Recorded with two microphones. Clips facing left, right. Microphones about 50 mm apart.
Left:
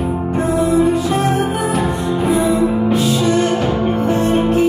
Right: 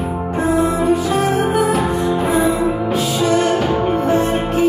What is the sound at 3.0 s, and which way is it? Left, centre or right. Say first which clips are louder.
Music: left 1 dB; centre.